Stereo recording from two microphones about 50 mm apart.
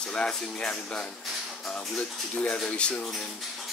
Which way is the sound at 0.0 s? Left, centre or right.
Centre.